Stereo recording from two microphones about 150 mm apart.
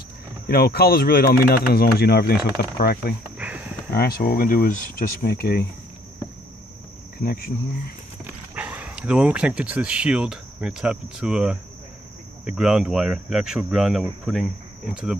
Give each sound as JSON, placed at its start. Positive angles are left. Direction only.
{"t": 0.5, "sound": "speech", "side_deg": 90}
{"t": 3.3, "sound": "livestock", "side_deg": -10}
{"t": 3.9, "sound": "speech", "side_deg": 85}
{"t": 7.2, "sound": "cricket", "side_deg": 80}
{"t": 8.3, "sound": "speech", "side_deg": -10}